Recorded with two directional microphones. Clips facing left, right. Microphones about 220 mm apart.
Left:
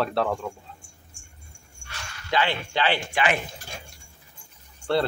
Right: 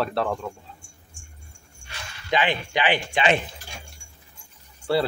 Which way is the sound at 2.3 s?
15° right (ahead or behind).